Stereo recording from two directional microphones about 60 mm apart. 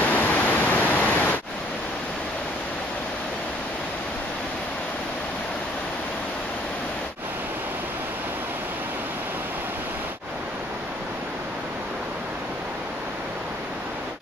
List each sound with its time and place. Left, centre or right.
0.1 s pink noise: left